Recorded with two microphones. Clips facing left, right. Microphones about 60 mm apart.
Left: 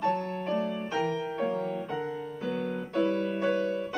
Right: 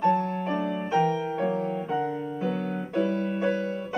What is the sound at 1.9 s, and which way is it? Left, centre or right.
Music, centre.